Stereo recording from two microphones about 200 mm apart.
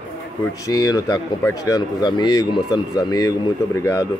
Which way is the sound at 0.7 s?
15° left (ahead or behind).